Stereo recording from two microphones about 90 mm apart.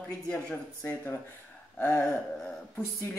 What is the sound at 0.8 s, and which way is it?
Speech, 30° left (ahead or behind).